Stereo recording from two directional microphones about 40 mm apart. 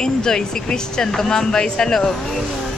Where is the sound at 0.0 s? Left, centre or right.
Centre.